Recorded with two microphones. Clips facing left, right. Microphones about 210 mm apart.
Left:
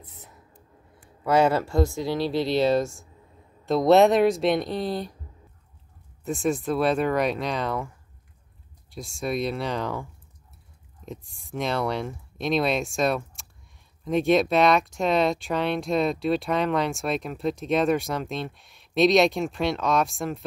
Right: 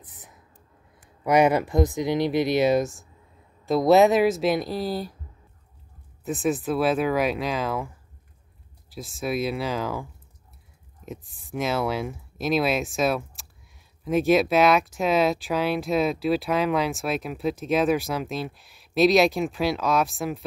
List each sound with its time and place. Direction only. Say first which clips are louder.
1.2 s speech: right 1 dB; 15° right (ahead or behind)
3.6 s speech: even; centre (ahead or behind)
6.2 s speech: even; centre (ahead or behind)
8.9 s speech: right 1 dB; centre (ahead or behind)
11.1 s speech: right 1 dB; centre (ahead or behind)